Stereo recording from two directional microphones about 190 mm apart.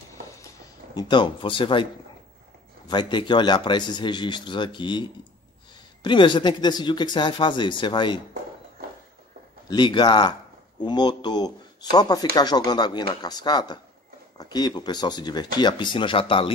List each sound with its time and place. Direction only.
0.9 s speech: 25° left (ahead or behind)
2.9 s speech: 25° left (ahead or behind)
9.7 s speech: 25° left (ahead or behind)